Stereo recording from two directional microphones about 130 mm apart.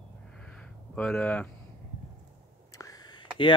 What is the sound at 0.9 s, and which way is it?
Speech, 5° left (ahead or behind).